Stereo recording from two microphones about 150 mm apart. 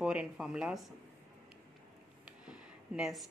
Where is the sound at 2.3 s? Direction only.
5° right (ahead or behind).